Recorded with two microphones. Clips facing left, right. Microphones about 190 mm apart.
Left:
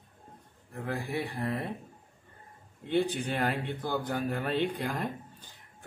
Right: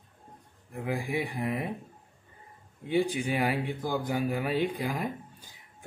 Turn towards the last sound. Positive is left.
turn(degrees=-5)  # may be behind; listen again after turning